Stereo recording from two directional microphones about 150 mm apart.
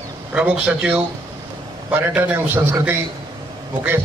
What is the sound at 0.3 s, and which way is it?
A man's voice, 5° right (ahead or behind).